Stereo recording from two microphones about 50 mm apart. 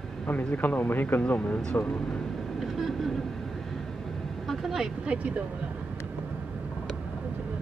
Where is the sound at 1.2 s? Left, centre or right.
Left.